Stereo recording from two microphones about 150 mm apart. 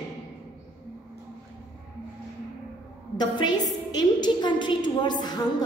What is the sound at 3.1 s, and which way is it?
A woman's voice, 30° left (ahead or behind).